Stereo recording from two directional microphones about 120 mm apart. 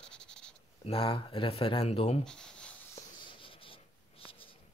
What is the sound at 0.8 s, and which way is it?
Speech, 50° left (ahead or behind).